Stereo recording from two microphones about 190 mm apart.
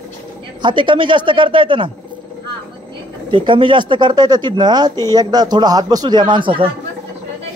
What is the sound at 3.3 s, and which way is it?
Speech, 25° right (ahead or behind).